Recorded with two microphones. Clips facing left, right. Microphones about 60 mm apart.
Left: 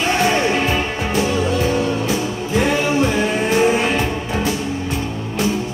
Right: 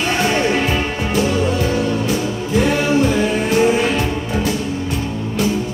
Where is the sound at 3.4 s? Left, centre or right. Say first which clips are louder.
Even; left.